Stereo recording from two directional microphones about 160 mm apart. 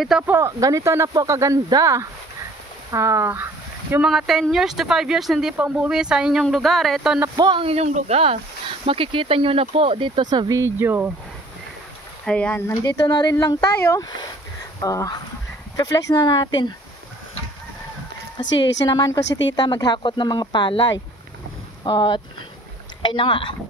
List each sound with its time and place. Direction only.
0.3 s speech: 20° right (ahead or behind)
3.9 s speech: 5° right (ahead or behind)
7.3 s speech: 30° right (ahead or behind); by 11.1 s 15° right (ahead or behind)
12.3 s speech: 10° left (ahead or behind)
12.8 s speech: 25° left (ahead or behind)
18.9 s speech: 25° left (ahead or behind)